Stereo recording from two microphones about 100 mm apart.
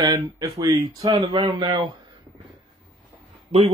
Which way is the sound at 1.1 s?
55° right (ahead or behind).